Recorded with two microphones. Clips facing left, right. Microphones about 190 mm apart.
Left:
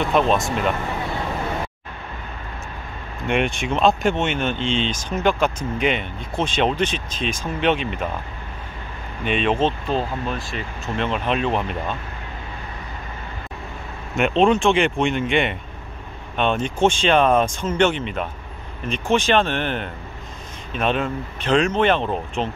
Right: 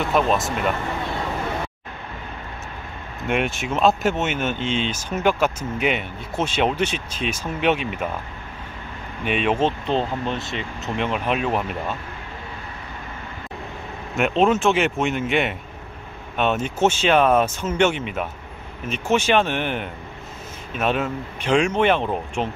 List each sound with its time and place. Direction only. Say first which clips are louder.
0.1 s speech: left 1 dB; centre (ahead or behind)
3.3 s speech: left 2 dB; 5° right (ahead or behind)
9.2 s speech: left 1 dB; 10° right (ahead or behind)
9.8 s speech: right 1 dB; 25° right (ahead or behind)
11.0 s speech: left 1 dB; 10° right (ahead or behind)
14.1 s speech: left 1 dB; 5° right (ahead or behind)